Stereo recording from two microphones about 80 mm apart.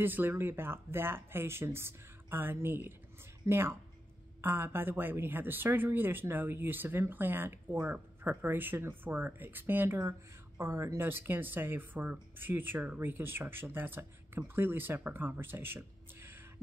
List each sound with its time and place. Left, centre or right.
0.0 s speech: right